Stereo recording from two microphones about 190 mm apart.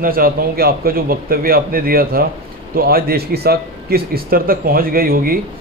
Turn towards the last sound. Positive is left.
turn(degrees=-50)  # may be behind; listen again after turning